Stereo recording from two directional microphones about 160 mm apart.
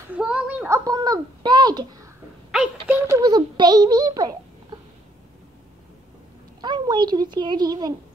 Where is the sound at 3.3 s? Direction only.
25° right (ahead or behind).